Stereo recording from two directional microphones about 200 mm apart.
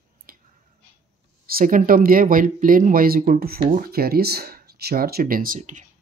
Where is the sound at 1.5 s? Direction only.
45° right (ahead or behind).